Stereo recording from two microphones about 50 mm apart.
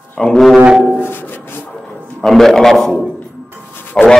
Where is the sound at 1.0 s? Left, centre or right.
Left.